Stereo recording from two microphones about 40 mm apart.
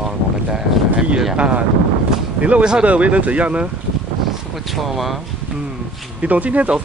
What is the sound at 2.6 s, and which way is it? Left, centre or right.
Speech, right.